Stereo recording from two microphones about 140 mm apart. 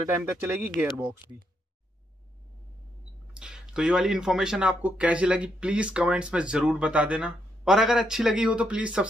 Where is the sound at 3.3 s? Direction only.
5° right (ahead or behind).